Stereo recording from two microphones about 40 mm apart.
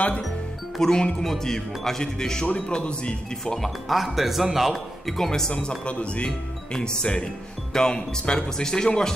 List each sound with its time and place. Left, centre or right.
0.7 s speech: centre
3.5 s speech: centre
5.0 s speech: centre
5.5 s speech: left